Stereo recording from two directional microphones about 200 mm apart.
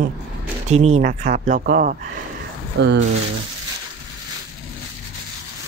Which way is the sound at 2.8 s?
60° right (ahead or behind).